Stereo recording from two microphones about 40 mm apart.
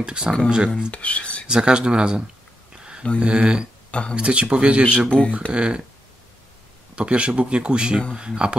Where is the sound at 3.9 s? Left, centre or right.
Left.